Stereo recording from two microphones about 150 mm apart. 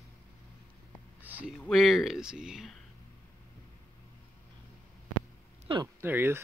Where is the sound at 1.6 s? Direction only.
Centre (ahead or behind).